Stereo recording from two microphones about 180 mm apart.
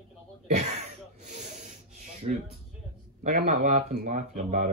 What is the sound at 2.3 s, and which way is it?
Speech, 40° right (ahead or behind).